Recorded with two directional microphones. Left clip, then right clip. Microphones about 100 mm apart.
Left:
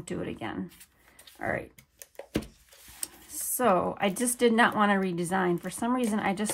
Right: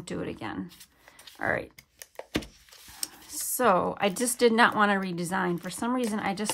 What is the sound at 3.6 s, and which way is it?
A woman's voice, 20° right (ahead or behind).